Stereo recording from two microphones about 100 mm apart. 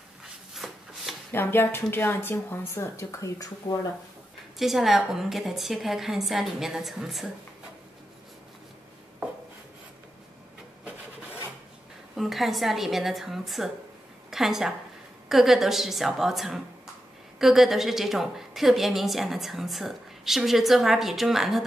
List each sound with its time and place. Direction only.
0.6 s chopping: centre (ahead or behind)
1.3 s a woman's voice: 20° left (ahead or behind)
4.6 s a woman's voice: centre (ahead or behind)
12.2 s a woman's voice: centre (ahead or behind)